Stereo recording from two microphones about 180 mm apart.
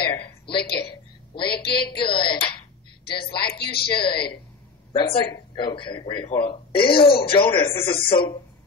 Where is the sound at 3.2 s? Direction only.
60° left (ahead or behind).